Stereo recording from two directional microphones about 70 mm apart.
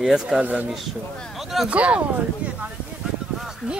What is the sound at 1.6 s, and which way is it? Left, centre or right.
Speech, centre.